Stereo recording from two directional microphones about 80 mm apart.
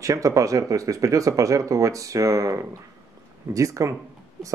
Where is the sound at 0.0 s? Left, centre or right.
Right.